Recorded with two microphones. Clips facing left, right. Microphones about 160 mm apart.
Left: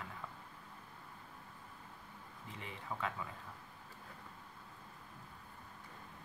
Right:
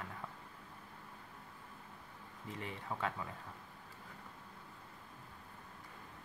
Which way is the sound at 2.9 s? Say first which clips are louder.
Right 1 dB; 10° right (ahead or behind).